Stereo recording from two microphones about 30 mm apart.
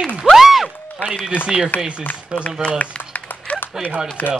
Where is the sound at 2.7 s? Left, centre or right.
Left.